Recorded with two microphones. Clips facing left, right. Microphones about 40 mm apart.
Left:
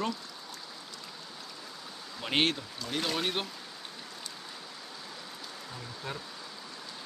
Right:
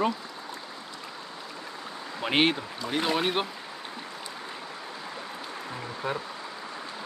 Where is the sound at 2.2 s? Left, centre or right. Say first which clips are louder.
Right 5 dB; centre.